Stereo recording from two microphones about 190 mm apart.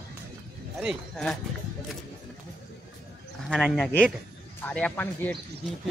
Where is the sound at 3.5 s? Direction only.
Centre (ahead or behind).